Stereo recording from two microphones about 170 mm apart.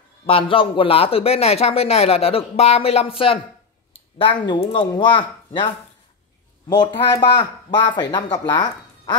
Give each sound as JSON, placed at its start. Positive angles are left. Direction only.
{"t": 0.3, "sound": "speech", "side_deg": 30}
{"t": 6.7, "sound": "speech", "side_deg": 25}